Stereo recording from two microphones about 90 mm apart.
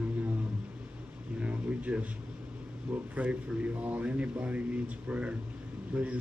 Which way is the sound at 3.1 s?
15° right (ahead or behind).